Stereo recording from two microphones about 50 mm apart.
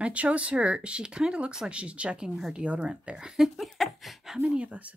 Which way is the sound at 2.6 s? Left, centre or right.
Right.